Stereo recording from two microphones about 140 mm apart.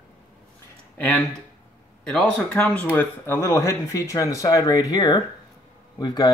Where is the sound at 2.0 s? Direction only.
Centre (ahead or behind).